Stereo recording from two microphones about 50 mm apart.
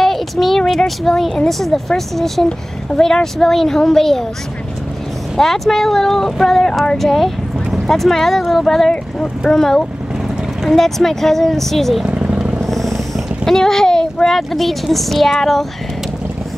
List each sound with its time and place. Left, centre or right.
0.0 s a sound: centre
1.5 s speech: centre
5.4 s speech: centre
12.1 s vehicle: right
12.5 s a sound: centre
13.5 s a child's voice: centre